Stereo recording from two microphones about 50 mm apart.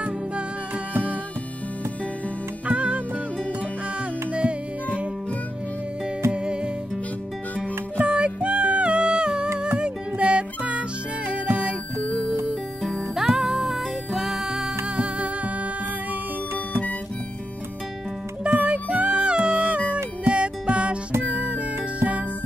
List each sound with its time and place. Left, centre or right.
2.6 s music: right
4.3 s music: right
6.3 s music: centre
8.0 s music: right
13.1 s music: centre
15.0 s music: right
18.5 s music: right
22.0 s music: right